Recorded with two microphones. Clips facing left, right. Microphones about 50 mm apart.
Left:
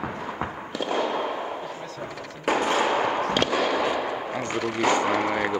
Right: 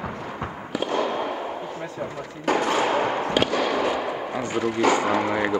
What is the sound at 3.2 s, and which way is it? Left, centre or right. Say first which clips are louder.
Fireworks: right 1 dB; centre.